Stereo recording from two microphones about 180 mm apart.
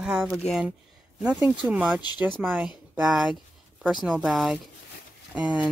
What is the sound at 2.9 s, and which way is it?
Speech, 5° right (ahead or behind).